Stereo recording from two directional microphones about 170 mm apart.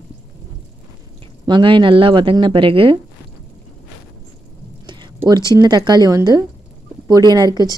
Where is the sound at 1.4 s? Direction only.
30° right (ahead or behind).